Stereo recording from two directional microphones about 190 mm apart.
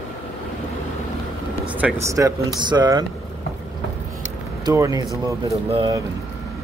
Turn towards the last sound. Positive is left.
turn(degrees=-25)  # may be behind; listen again after turning